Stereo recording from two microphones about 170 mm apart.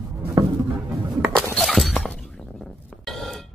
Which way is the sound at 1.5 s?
Centre (ahead or behind).